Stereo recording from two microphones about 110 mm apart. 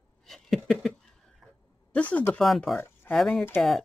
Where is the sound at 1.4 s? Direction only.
5° right (ahead or behind).